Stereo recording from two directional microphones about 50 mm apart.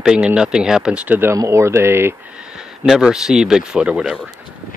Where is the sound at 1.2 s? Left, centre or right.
Right.